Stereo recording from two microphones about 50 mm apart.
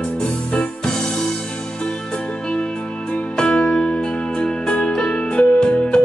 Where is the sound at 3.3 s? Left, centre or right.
Centre.